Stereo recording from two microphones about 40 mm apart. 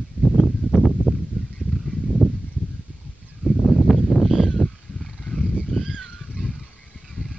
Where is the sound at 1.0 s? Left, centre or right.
Left.